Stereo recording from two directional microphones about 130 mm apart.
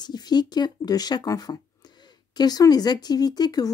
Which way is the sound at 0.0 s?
35° left (ahead or behind).